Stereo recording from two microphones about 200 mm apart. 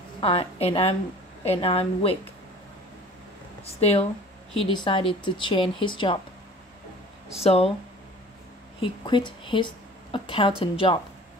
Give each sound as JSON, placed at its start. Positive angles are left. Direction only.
{"t": 0.2, "sound": "speech", "side_deg": 30}
{"t": 3.6, "sound": "speech", "side_deg": 30}
{"t": 7.4, "sound": "speech", "side_deg": 30}
{"t": 8.8, "sound": "a woman's voice", "side_deg": 25}